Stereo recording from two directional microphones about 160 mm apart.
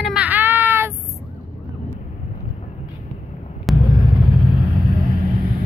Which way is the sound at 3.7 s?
Centre (ahead or behind).